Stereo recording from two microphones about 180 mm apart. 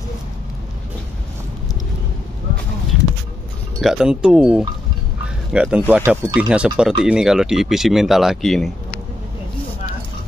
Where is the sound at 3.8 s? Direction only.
5° right (ahead or behind).